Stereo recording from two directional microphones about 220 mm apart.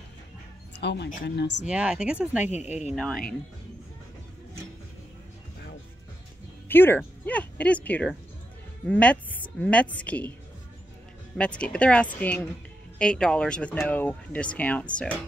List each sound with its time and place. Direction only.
0.7 s speech: 50° left (ahead or behind)
1.7 s speech: 5° right (ahead or behind)
2.5 s speech: 30° left (ahead or behind)
2.9 s speech: centre (ahead or behind)
6.7 s a woman's voice: 10° left (ahead or behind)
11.3 s speech: 5° left (ahead or behind)